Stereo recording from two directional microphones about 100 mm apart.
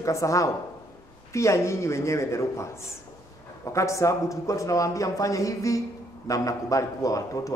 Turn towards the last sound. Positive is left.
turn(degrees=35)  # may be behind; listen again after turning